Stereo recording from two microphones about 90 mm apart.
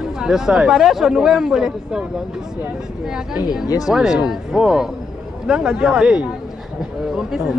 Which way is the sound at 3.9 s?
5° right (ahead or behind).